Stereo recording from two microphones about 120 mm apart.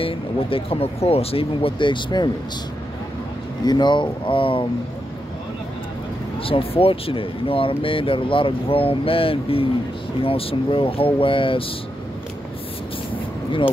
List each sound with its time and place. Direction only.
0.0 s speech: 50° left (ahead or behind)
3.6 s speech: 40° left (ahead or behind)
6.4 s speech: 50° left (ahead or behind)
13.1 s a sound: 45° left (ahead or behind)